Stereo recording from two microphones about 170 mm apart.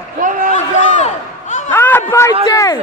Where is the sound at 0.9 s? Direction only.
45° left (ahead or behind).